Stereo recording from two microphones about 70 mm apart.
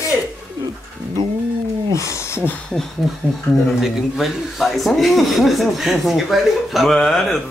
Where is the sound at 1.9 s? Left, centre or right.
Left.